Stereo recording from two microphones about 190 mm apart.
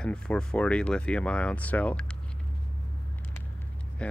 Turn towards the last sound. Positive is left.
turn(degrees=5)  # may be behind; listen again after turning